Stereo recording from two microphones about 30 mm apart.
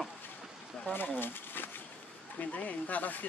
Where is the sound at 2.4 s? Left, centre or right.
Left.